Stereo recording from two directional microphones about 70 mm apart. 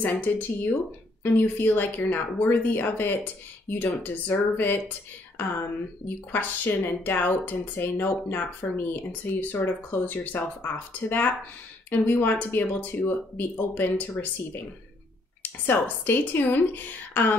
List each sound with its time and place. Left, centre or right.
0.0 s speech: left
6.3 s speech: left